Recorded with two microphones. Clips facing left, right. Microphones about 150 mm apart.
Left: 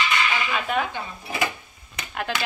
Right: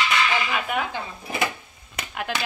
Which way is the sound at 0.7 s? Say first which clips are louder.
Left 3 dB; 10° right (ahead or behind).